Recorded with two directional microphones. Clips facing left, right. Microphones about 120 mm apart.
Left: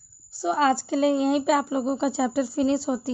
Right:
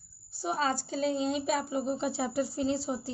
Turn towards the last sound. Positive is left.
turn(degrees=75)  # may be behind; listen again after turning